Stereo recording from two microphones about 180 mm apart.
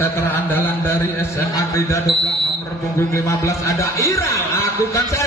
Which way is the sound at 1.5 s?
15° left (ahead or behind).